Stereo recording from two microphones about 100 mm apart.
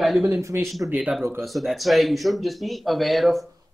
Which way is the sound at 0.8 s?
15° right (ahead or behind).